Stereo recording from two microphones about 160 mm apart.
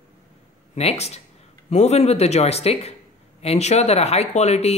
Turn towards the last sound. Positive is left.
turn(degrees=40)  # may be behind; listen again after turning